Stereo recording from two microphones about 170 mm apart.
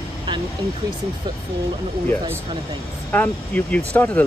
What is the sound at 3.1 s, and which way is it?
Speech, 10° left (ahead or behind).